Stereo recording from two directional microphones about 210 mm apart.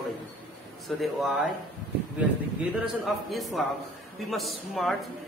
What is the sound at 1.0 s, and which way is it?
Speech, centre (ahead or behind).